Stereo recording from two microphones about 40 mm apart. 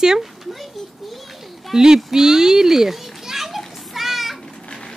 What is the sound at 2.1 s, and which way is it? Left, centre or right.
Children playing, centre.